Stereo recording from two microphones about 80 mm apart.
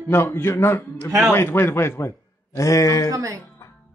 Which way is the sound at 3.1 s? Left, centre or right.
Right.